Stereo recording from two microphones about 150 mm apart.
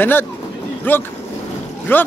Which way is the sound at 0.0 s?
15° left (ahead or behind).